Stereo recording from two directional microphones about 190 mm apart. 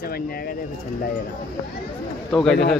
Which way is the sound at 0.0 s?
50° left (ahead or behind).